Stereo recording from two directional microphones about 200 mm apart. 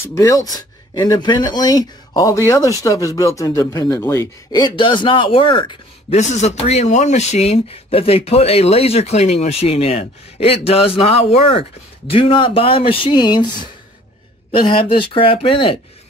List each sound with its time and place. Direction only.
0.1 s speech: 15° left (ahead or behind)